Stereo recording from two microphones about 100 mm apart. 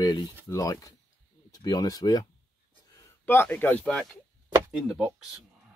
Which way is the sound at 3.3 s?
20° left (ahead or behind).